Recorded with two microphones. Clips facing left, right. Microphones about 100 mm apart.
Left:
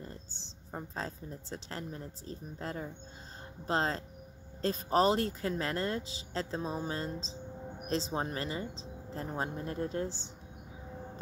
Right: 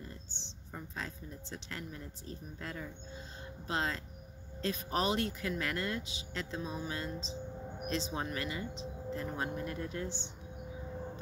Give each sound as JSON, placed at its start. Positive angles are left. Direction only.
{"t": 0.7, "sound": "speech", "side_deg": 35}